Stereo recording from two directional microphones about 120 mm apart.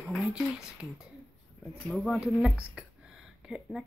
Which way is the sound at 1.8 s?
Centre (ahead or behind).